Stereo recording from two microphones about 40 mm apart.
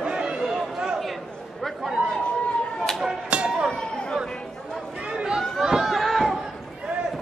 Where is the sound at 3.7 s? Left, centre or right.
Left.